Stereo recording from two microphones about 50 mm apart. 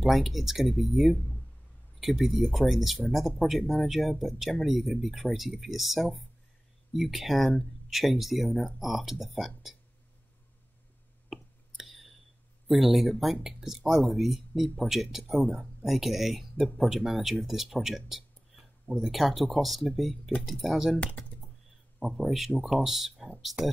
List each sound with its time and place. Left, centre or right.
0.0 s speech: centre
11.2 s a sound: centre
12.6 s speech: centre
21.0 s speech: left
22.0 s speech: centre
23.6 s speech: right